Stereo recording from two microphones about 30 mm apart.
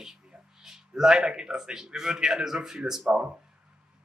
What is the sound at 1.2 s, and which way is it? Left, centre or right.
Speech, right.